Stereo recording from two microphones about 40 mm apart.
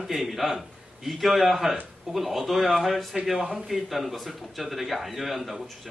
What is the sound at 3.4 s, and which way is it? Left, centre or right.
Speech, centre.